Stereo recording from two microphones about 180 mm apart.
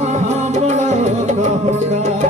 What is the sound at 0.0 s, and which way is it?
Music, 40° right (ahead or behind).